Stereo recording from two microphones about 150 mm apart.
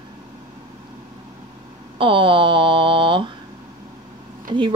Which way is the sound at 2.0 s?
35° right (ahead or behind).